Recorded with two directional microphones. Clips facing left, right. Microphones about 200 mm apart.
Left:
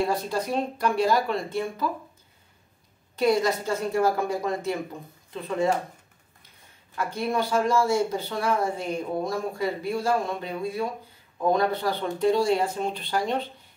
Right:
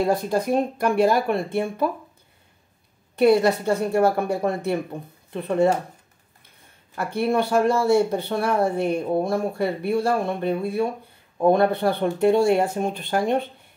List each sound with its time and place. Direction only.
0.1 s speech: 50° right (ahead or behind)
3.2 s speech: 60° right (ahead or behind)
7.0 s speech: 60° right (ahead or behind)